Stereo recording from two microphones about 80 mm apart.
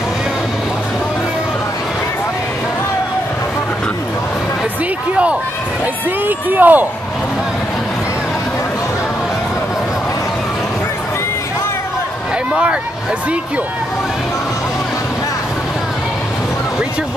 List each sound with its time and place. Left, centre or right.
5.1 s run: centre
6.2 s speech: right